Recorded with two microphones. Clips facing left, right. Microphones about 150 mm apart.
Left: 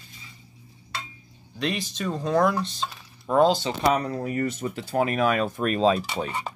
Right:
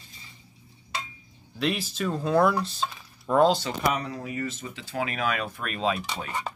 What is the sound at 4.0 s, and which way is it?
Speech, 50° left (ahead or behind).